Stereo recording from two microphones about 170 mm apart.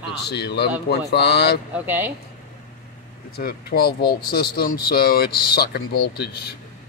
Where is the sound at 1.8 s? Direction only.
10° right (ahead or behind).